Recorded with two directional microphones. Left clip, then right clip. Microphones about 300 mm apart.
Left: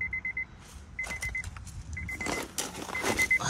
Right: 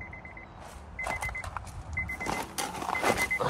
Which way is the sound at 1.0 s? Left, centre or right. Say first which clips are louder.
Right 2 dB; centre.